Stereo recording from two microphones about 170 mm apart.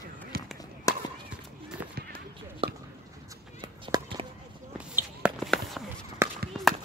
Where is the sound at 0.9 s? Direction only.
20° left (ahead or behind).